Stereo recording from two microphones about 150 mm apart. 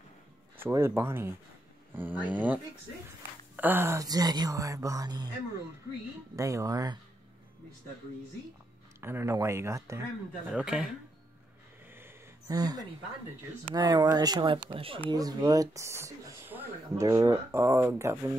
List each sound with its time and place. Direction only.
0.6 s speech: 15° right (ahead or behind)
6.3 s speech: 20° right (ahead or behind)
9.0 s speech: 15° right (ahead or behind)
10.5 s speech: 5° right (ahead or behind)
11.9 s a sound: 20° right (ahead or behind)
13.7 s speech: 25° right (ahead or behind)